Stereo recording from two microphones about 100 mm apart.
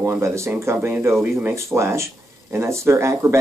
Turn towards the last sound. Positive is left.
turn(degrees=-25)  # may be behind; listen again after turning